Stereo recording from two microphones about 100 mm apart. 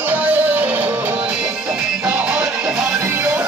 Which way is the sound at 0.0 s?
15° right (ahead or behind).